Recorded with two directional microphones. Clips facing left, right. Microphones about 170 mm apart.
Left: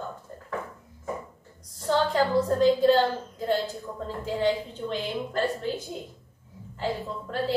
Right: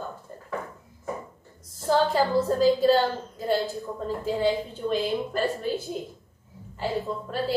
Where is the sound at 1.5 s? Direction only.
5° right (ahead or behind).